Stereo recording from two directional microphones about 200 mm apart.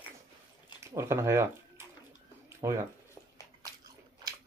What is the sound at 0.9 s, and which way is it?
Speech, 15° right (ahead or behind).